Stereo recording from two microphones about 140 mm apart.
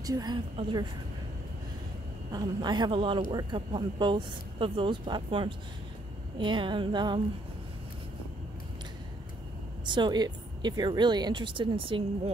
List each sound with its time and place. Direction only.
0.0 s a woman's voice: 25° right (ahead or behind)
2.3 s speech: 30° right (ahead or behind)
9.8 s speech: 35° right (ahead or behind)